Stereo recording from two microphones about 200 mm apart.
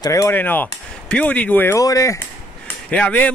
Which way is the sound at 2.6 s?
5° left (ahead or behind).